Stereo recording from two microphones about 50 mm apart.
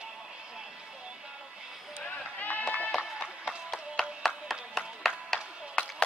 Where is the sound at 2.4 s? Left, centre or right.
Left.